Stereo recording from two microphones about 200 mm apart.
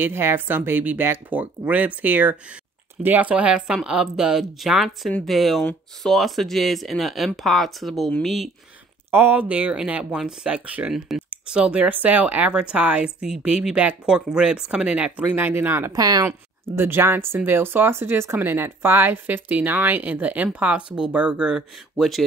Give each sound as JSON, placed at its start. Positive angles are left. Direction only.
{"t": 0.0, "sound": "speech", "side_deg": -10}